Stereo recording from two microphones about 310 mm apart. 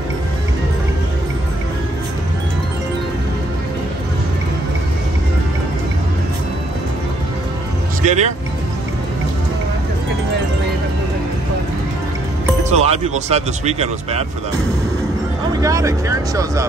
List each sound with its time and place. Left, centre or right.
8.0 s speech: right
12.6 s speech: centre
15.6 s speech: centre